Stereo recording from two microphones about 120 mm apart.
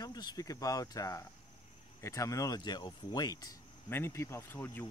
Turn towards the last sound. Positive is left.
turn(degrees=15)  # may be behind; listen again after turning